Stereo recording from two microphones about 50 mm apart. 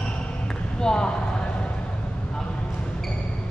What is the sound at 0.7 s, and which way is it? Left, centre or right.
Speech, centre.